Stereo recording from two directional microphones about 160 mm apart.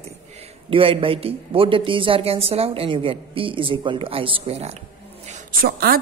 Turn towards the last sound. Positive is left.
turn(degrees=-70)  # may be behind; listen again after turning